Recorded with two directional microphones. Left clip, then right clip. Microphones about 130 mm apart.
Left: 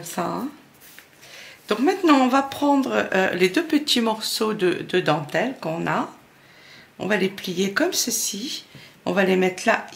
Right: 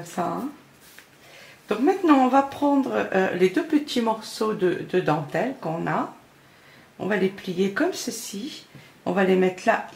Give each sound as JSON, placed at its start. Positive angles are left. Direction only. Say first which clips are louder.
{"t": 0.2, "sound": "speech", "louder": "even", "side_deg": 30}
{"t": 1.7, "sound": "speech", "louder": "left 1 dB", "side_deg": 35}